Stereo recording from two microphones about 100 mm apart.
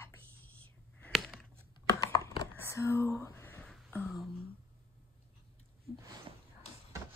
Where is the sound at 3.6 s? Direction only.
5° left (ahead or behind).